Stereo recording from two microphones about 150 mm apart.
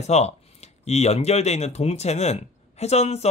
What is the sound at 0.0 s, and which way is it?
Speech, 45° left (ahead or behind).